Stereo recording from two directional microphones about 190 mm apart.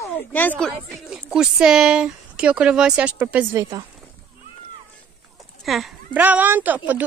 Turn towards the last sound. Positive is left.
turn(degrees=-10)  # may be behind; listen again after turning